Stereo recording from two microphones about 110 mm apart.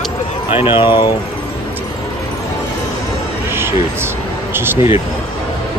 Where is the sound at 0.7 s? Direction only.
45° left (ahead or behind).